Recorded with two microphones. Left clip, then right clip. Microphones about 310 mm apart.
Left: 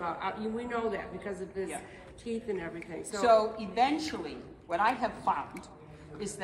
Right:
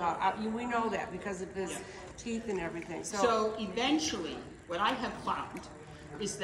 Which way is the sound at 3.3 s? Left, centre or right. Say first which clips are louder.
Left 6 dB; left.